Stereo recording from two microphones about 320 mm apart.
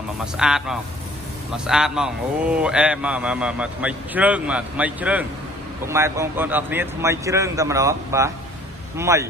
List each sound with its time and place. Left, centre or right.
0.2 s a man's voice: centre